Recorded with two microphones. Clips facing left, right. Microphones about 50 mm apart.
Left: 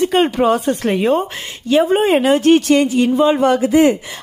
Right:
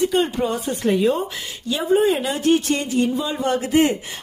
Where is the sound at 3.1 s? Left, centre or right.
Left.